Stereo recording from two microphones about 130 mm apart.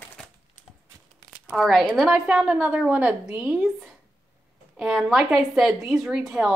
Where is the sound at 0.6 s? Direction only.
85° left.